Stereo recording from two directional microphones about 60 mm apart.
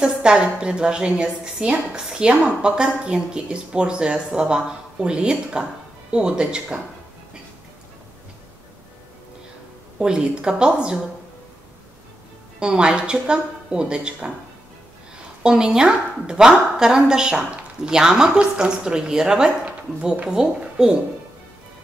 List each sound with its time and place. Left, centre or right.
0.0 s a woman's voice: centre
9.9 s a woman's voice: centre
12.5 s a woman's voice: centre
15.4 s a woman's voice: centre